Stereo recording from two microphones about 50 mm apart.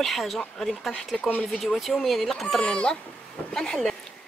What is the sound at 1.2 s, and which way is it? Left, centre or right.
Speech, left.